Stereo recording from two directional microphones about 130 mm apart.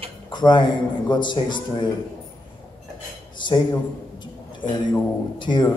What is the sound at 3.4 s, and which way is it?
Speech, 35° left (ahead or behind).